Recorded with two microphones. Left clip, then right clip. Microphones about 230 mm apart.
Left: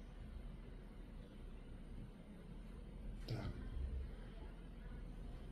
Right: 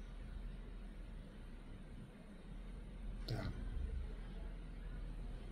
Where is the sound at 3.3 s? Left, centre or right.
Centre.